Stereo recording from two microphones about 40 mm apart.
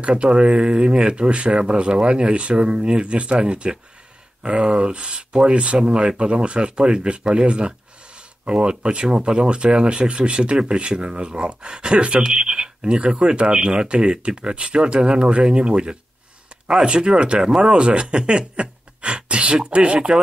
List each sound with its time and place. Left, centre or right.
0.0 s speech: right